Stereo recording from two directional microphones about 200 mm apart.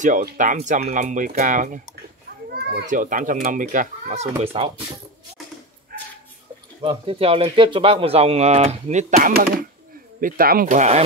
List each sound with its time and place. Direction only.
0.0 s speech: 40° right (ahead or behind)
2.5 s a child's voice: 50° right (ahead or behind); by 4.8 s 30° right (ahead or behind)
6.8 s speech: 25° right (ahead or behind)
9.3 s speech: 50° right (ahead or behind)